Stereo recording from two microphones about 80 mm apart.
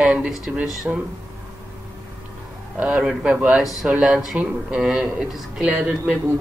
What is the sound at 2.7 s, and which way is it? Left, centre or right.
Speech, centre.